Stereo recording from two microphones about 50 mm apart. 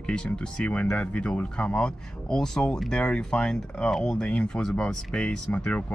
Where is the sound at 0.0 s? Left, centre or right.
Centre.